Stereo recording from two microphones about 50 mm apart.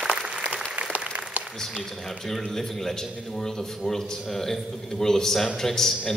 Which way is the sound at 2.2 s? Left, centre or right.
Centre.